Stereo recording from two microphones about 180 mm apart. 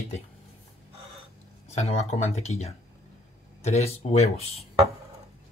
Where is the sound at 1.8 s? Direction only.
40° left (ahead or behind).